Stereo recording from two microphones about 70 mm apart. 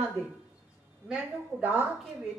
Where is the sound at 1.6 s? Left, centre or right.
Right.